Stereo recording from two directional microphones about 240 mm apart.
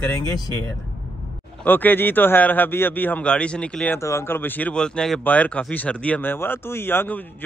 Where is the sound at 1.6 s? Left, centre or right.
Centre.